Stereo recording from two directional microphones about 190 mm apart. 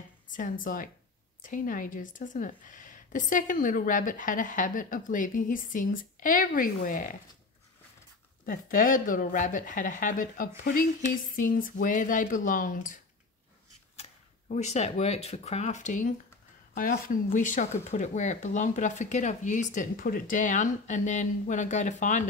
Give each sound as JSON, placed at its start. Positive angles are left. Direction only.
{"t": 0.3, "sound": "a woman's voice", "side_deg": 45}
{"t": 8.5, "sound": "a woman's voice", "side_deg": 45}
{"t": 14.5, "sound": "speech", "side_deg": 35}